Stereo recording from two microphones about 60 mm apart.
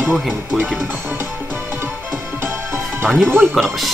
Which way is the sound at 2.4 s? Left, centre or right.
Right.